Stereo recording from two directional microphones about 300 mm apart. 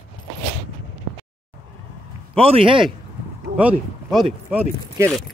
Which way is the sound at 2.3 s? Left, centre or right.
Centre.